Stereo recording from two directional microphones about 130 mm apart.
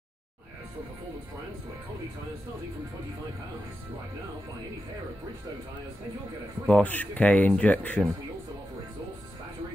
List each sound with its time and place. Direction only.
6.7 s speech: 10° left (ahead or behind)